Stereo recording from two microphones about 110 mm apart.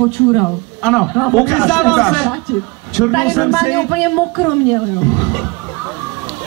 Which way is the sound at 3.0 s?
Centre (ahead or behind).